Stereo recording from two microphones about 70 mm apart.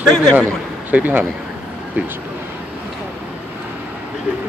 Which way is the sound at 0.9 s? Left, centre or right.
Right.